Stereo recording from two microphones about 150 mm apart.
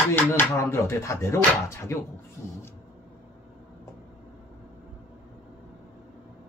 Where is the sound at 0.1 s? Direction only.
15° left (ahead or behind).